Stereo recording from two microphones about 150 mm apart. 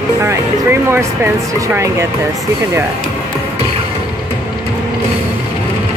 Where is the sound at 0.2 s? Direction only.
15° right (ahead or behind).